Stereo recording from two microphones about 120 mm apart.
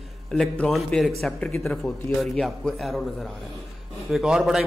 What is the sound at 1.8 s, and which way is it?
Speech, 20° left (ahead or behind).